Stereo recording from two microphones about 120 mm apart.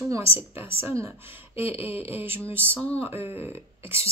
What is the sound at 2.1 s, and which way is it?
Speech, 15° right (ahead or behind).